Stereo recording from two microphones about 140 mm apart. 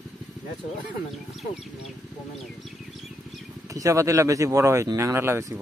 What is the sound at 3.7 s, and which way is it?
Speech, 25° right (ahead or behind).